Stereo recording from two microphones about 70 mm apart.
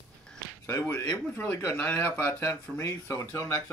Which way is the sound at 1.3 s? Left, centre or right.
Left.